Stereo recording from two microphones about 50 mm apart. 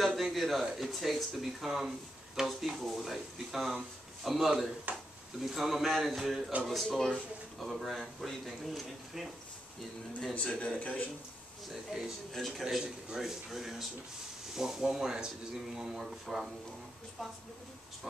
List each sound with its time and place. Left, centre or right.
0.0 s speech: centre
4.9 s speech: right
5.4 s speech: centre
10.3 s a man's voice: left
11.9 s a man's voice: centre
12.4 s speech: centre
12.6 s a man's voice: centre